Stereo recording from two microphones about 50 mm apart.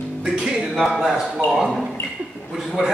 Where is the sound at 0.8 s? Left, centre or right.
Centre.